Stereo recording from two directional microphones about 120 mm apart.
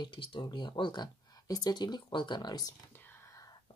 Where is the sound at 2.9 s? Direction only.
20° left (ahead or behind).